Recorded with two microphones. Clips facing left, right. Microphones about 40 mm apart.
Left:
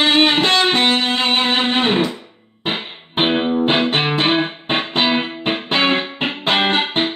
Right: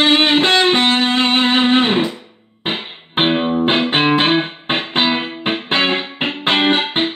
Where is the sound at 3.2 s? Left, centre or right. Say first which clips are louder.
Right 1 dB; centre.